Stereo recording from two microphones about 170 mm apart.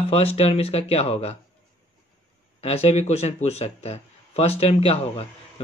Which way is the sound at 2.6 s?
35° left (ahead or behind).